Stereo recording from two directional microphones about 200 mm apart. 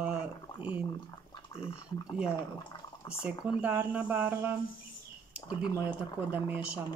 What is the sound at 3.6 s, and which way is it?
Speech, 10° right (ahead or behind).